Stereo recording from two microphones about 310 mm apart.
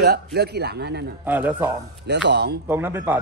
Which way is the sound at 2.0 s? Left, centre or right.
Right.